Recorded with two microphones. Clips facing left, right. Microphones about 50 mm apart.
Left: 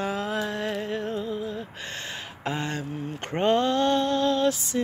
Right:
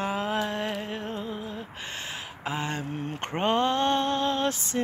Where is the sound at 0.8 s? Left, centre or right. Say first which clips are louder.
Left 4 dB; centre.